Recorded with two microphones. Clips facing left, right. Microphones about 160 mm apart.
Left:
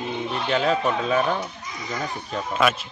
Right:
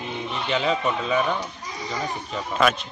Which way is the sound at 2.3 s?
5° left (ahead or behind).